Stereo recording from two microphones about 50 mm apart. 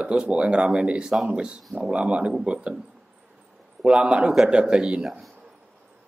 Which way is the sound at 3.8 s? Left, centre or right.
Right.